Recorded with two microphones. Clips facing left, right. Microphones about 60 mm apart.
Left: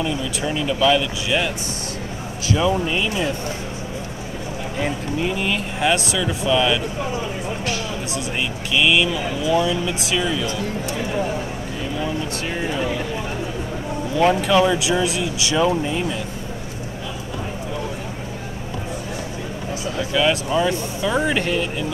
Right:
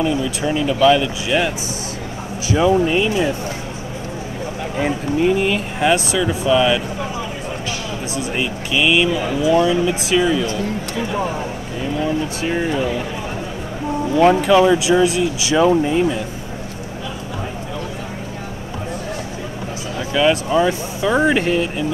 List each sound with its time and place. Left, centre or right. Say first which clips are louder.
0.0 s speech: right 4 dB; centre
2.7 s speech: right 6 dB; centre
4.7 s speech: right 5 dB; centre
8.1 s speech: right 6 dB; centre
12.0 s speech: right 5 dB; centre
14.1 s speech: right 4 dB; centre
15.0 s speech: right 4 dB; centre
20.0 s speech: right 3 dB; centre